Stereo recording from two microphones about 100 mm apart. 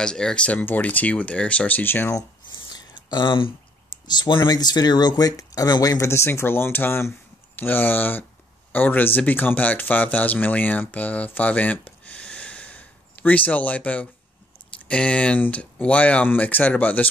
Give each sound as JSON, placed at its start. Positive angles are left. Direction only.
{"t": 0.0, "sound": "speech", "side_deg": 5}
{"t": 2.1, "sound": "a sound", "side_deg": 45}
{"t": 4.1, "sound": "speech", "side_deg": 50}